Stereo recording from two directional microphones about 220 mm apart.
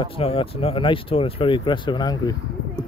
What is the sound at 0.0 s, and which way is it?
Speech, 25° left (ahead or behind).